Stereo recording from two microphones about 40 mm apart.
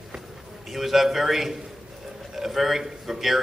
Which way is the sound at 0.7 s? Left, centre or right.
Centre.